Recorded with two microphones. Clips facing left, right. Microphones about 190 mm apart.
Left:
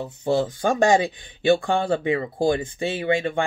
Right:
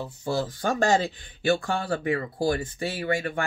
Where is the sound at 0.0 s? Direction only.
20° left (ahead or behind).